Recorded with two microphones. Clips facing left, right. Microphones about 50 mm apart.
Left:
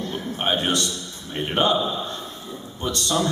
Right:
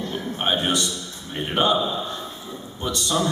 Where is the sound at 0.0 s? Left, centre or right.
Centre.